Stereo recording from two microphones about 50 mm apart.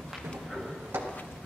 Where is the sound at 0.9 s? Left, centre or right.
Right.